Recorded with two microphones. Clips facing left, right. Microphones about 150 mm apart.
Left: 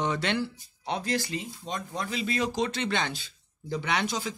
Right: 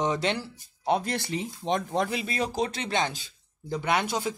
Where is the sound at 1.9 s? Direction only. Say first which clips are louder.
Right 3 dB; 70° right (ahead or behind).